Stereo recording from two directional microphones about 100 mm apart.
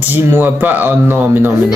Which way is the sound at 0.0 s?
20° right (ahead or behind).